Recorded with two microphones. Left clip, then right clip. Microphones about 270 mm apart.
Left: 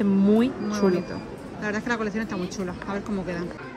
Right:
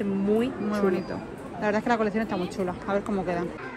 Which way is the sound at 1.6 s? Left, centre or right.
Centre.